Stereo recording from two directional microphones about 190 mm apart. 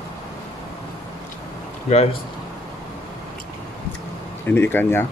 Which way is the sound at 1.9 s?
35° left (ahead or behind).